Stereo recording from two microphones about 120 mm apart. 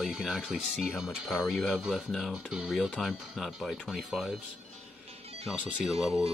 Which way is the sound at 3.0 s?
Centre (ahead or behind).